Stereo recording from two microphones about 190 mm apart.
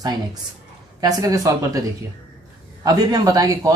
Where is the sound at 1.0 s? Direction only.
20° right (ahead or behind).